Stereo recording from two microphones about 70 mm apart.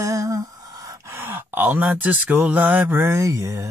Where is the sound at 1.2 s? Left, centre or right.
Right.